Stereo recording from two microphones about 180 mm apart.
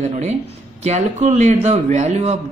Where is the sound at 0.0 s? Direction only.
40° right (ahead or behind).